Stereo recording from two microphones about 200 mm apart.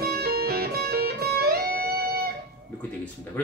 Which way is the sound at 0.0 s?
50° right (ahead or behind).